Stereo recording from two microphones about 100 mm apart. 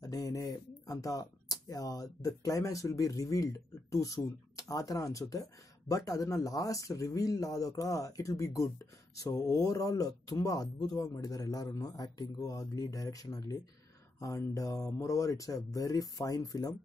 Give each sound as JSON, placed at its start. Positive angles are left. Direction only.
{"t": 0.0, "sound": "speech", "side_deg": 35}